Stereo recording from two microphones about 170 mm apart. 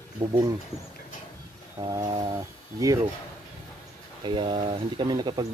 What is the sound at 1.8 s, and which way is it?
Speech, 25° right (ahead or behind).